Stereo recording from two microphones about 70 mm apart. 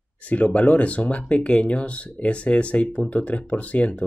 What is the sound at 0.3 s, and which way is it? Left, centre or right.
Speech, left.